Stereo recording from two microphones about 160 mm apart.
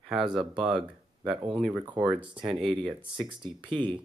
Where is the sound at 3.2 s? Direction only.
30° right (ahead or behind).